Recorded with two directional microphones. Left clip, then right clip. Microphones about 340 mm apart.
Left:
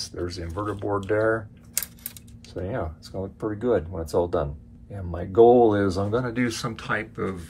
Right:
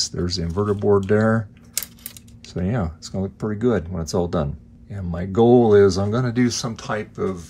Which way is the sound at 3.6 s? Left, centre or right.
Right.